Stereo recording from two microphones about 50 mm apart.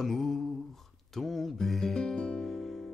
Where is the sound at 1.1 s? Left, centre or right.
Centre.